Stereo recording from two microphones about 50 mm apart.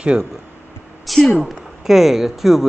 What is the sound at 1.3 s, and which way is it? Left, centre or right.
Speech, centre.